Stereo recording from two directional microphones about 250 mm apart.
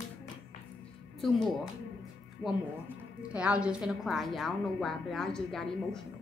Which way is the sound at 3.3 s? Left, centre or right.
Centre.